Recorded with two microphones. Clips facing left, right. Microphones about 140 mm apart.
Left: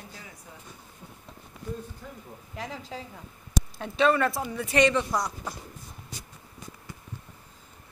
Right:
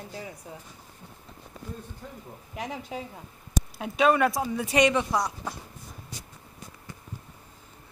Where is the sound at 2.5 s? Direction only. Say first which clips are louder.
Right 3 dB; 15° right (ahead or behind).